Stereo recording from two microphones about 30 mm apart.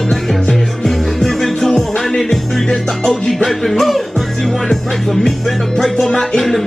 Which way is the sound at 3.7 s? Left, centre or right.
Centre.